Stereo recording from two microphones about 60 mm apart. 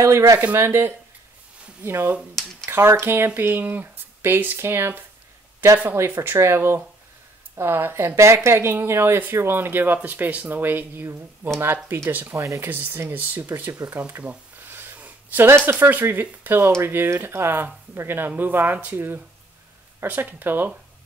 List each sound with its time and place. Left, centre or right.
0.0 s speech: right
0.6 s speech: right
6.1 s speech: right
6.4 s speech: right
12.4 s speech: right
12.6 s speech: right
14.7 s snort: right
15.0 s a sound: right
15.4 s speech: right